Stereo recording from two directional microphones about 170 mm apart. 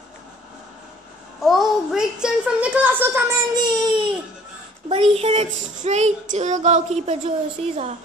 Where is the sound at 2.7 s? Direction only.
10° right (ahead or behind).